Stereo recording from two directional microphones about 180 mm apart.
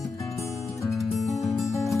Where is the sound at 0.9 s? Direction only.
Centre (ahead or behind).